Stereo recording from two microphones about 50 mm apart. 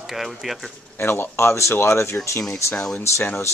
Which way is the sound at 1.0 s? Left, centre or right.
Left.